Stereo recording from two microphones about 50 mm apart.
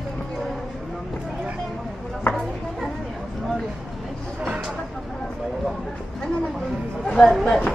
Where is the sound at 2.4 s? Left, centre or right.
Centre.